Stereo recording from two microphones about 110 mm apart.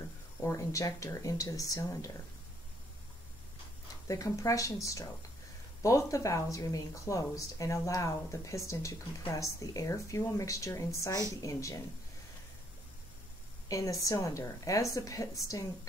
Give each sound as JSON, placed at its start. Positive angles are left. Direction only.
{"t": 0.4, "sound": "speech", "side_deg": 25}
{"t": 4.1, "sound": "speech", "side_deg": 30}
{"t": 13.7, "sound": "a woman's voice", "side_deg": 30}